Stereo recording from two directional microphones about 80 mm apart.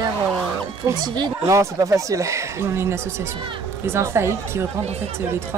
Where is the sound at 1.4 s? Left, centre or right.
Right.